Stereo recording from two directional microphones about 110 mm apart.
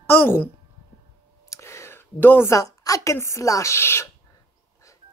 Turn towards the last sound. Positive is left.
turn(degrees=25)  # may be behind; listen again after turning